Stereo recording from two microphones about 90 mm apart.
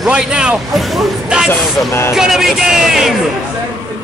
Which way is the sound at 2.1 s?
5° right (ahead or behind).